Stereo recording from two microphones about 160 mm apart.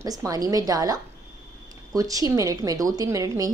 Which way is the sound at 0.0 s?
20° right (ahead or behind).